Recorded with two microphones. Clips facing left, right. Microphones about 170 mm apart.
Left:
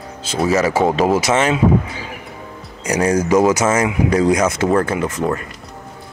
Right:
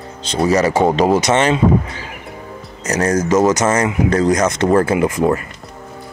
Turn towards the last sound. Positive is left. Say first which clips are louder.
# right 4 dB
turn(degrees=-10)  # may be behind; listen again after turning